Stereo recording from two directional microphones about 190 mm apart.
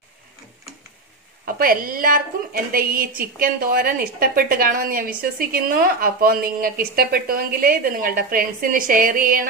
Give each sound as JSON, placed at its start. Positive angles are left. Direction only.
{"t": 1.4, "sound": "a woman's voice", "side_deg": -45}